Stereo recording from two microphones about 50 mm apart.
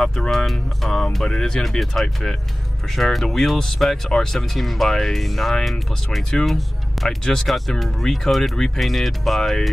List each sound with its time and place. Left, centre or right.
0.0 s speech: centre